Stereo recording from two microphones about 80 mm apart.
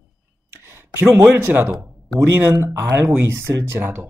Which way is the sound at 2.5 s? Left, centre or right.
Right.